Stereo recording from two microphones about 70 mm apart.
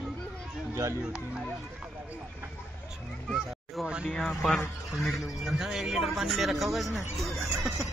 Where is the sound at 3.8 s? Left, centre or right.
Centre.